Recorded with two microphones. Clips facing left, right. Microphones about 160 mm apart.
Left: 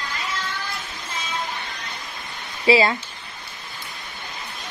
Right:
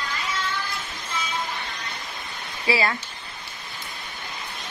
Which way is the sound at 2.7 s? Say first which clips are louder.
Left 7 dB; 25° left (ahead or behind).